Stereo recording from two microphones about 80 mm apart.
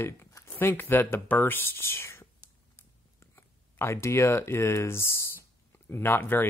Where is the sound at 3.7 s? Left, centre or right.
Left.